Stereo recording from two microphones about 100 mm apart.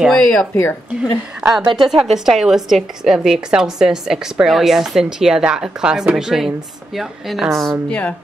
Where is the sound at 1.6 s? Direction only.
55° right (ahead or behind).